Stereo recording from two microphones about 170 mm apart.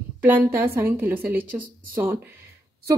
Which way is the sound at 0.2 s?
10° right (ahead or behind).